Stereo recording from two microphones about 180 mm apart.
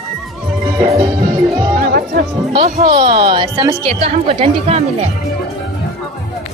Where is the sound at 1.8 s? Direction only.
55° right (ahead or behind).